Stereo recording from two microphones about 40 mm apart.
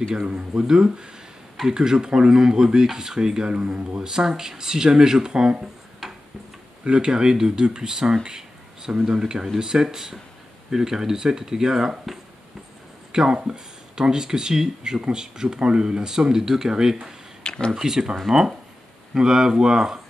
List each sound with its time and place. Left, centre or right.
0.1 s speech: centre
6.8 s speech: right
17.4 s a sound: left
17.7 s speech: centre